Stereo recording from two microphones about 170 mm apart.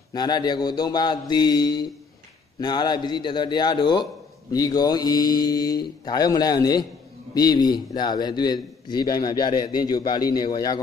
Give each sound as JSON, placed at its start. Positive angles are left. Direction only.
{"t": 0.1, "sound": "a man's voice", "side_deg": 25}